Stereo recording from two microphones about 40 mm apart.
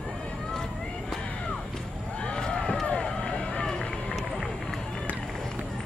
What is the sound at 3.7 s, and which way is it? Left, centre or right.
Run, centre.